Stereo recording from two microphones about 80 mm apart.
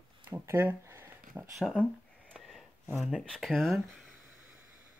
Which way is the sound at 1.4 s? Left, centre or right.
Right.